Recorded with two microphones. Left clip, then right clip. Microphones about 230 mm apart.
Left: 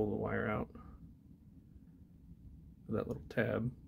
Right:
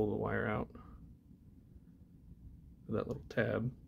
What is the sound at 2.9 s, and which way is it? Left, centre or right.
Speech, centre.